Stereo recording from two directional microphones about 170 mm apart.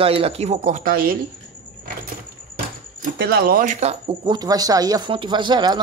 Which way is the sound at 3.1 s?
65° right (ahead or behind).